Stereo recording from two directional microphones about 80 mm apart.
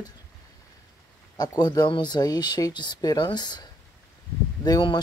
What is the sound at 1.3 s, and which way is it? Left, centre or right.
Speech, left.